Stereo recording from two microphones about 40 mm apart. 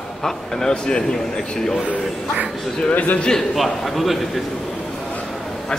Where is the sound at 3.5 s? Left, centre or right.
Centre.